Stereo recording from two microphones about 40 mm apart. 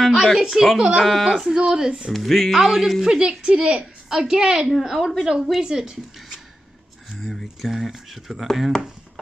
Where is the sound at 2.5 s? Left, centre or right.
Centre.